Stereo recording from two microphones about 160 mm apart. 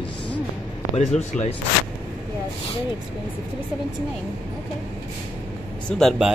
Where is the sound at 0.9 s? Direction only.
45° left (ahead or behind).